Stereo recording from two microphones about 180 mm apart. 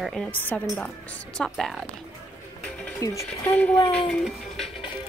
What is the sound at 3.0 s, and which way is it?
Speech, 15° left (ahead or behind).